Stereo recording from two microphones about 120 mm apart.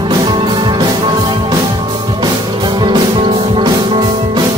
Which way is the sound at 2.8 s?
40° right (ahead or behind).